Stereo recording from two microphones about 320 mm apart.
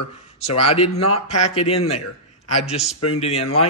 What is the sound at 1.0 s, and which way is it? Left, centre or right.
Speech, centre.